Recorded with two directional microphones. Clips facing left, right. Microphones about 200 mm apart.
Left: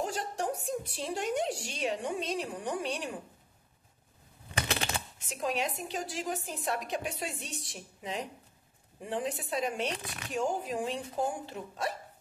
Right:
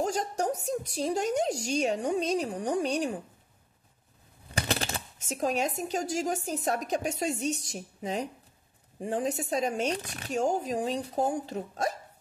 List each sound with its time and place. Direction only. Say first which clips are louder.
0.0 s a woman's voice: right 4 dB; 40° right (ahead or behind)
4.6 s a woman's voice: right 2 dB; 35° right (ahead or behind)